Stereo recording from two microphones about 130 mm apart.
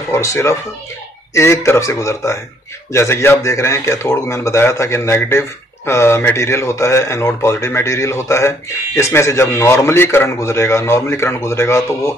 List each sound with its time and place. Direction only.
0.1 s a man's voice: 20° left (ahead or behind)